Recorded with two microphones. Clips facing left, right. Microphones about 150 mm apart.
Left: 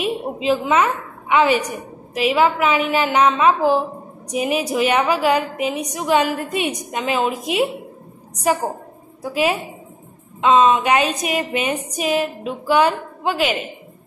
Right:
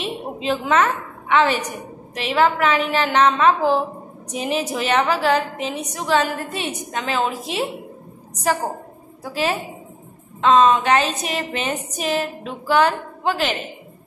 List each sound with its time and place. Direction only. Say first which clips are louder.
0.0 s a woman's voice: left 4 dB; 5° left (ahead or behind)
9.2 s a woman's voice: left 3 dB; 10° left (ahead or behind)